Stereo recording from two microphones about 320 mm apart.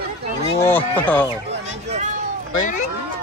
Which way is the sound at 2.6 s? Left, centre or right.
Left.